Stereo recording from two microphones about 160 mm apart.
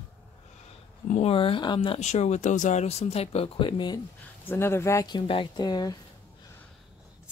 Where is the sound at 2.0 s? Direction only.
45° left (ahead or behind); by 4.0 s 30° left (ahead or behind).